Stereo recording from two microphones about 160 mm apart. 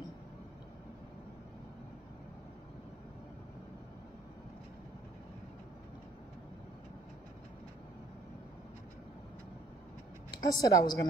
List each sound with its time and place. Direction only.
10.3 s a woman's voice: 25° left (ahead or behind)